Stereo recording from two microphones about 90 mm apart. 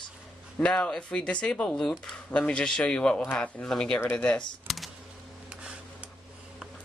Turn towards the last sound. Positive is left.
turn(degrees=-10)  # may be behind; listen again after turning